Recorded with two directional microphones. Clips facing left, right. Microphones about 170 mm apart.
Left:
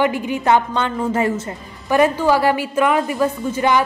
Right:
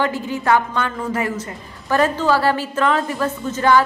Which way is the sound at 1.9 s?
15° left (ahead or behind).